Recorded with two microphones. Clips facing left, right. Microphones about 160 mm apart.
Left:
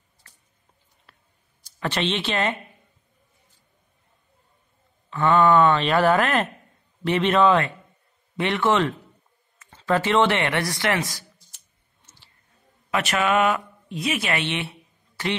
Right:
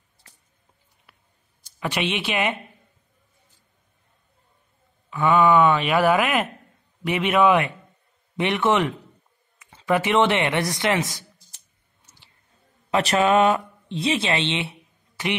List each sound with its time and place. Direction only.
1.1 s a sound: 10° right (ahead or behind)
1.8 s speech: 10° right (ahead or behind)
5.1 s speech: 10° right (ahead or behind)
12.9 s speech: 30° right (ahead or behind)